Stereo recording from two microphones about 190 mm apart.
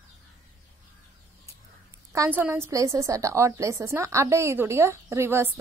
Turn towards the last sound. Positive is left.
turn(degrees=-15)  # may be behind; listen again after turning